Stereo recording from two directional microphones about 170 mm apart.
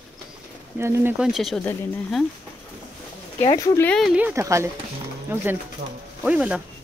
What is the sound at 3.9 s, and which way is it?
Speech, 5° right (ahead or behind).